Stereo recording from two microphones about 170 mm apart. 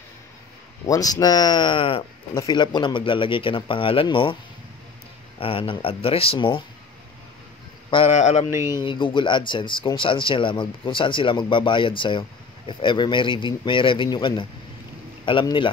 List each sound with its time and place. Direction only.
0.8 s speech: 20° left (ahead or behind)
5.4 s speech: 30° left (ahead or behind)
8.1 s speech: 40° left (ahead or behind)
8.5 s speech: 15° right (ahead or behind)
8.8 s speech: 30° left (ahead or behind)